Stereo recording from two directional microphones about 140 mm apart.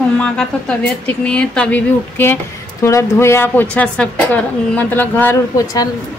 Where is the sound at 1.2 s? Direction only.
5° left (ahead or behind).